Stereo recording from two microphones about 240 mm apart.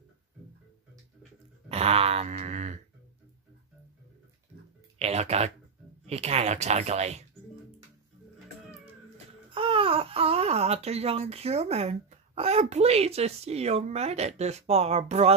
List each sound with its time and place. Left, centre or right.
1.7 s wail: right
4.9 s speech: right
9.5 s speech: right